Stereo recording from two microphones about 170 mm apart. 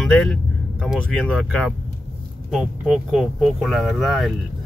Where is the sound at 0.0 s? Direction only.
5° left (ahead or behind).